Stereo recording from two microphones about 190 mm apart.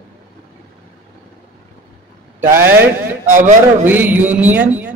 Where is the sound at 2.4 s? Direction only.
10° right (ahead or behind).